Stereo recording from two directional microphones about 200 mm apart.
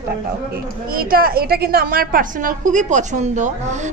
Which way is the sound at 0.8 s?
45° right (ahead or behind).